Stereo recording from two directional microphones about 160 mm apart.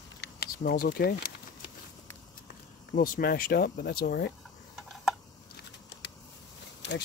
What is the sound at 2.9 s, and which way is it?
Speech, 65° left (ahead or behind).